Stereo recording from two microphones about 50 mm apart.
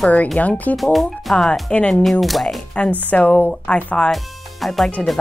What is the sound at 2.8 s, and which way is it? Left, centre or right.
Speech, left.